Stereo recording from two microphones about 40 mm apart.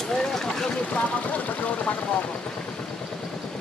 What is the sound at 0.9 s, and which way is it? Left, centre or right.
Vehicle, left.